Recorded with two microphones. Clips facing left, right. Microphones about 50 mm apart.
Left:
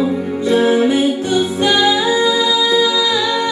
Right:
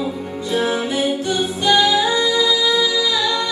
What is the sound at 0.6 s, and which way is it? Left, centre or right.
Music, centre.